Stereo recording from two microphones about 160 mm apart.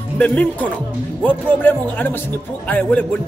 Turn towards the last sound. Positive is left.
turn(degrees=10)  # may be behind; listen again after turning